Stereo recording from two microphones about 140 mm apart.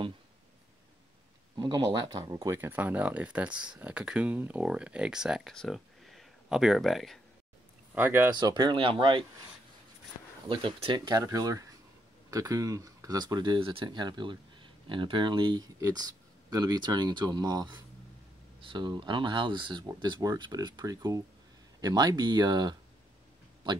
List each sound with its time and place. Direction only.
1.6 s speech: 30° right (ahead or behind); by 7.2 s centre (ahead or behind)
7.9 s speech: 15° right (ahead or behind)
8.4 s speech: 30° right (ahead or behind)
10.5 s speech: 35° right (ahead or behind)